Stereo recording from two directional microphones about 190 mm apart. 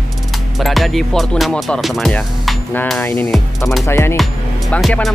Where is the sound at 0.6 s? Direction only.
Centre (ahead or behind).